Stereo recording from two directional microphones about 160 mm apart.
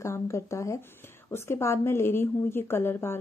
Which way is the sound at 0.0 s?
20° left (ahead or behind).